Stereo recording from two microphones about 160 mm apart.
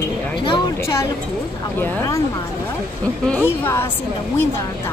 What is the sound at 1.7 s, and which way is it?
Speech, 15° left (ahead or behind).